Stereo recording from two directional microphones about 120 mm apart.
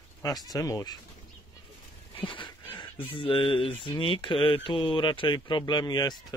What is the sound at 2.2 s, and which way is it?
Dog, 45° left (ahead or behind).